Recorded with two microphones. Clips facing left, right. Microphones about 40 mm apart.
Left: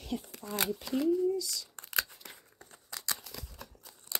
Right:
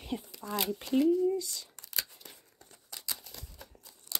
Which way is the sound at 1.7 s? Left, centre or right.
Left.